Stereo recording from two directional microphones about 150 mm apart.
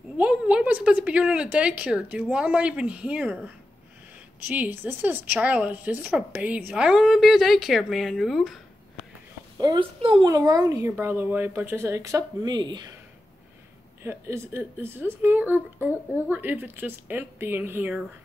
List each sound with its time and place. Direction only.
0.2 s a woman's voice: 5° right (ahead or behind)
9.6 s speech: 30° right (ahead or behind)
10.3 s a woman's voice: 25° right (ahead or behind)
14.0 s a woman's voice: 15° right (ahead or behind)